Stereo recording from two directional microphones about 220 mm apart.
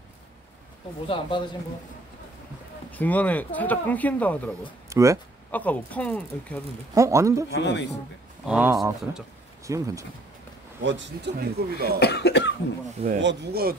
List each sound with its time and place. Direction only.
1.0 s speech: 25° left (ahead or behind)
2.9 s speech: 5° left (ahead or behind)
4.8 s speech: 15° right (ahead or behind)
5.5 s speech: 5° left (ahead or behind)
6.9 s speech: 15° right (ahead or behind)
7.5 s cough: 50° left (ahead or behind)
8.5 s speech: 5° right (ahead or behind)
10.8 s speech: 55° right (ahead or behind)
12.0 s cough: 50° left (ahead or behind)
13.2 s speech: 50° right (ahead or behind)